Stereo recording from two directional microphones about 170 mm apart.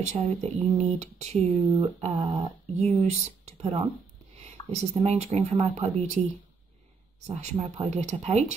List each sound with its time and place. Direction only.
0.0 s speech: 40° right (ahead or behind)
4.7 s speech: 40° right (ahead or behind)